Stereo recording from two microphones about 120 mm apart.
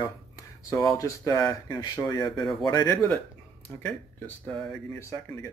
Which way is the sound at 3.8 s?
10° left (ahead or behind).